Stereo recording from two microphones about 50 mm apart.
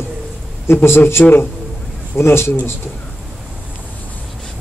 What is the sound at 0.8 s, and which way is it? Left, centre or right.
Speech, left.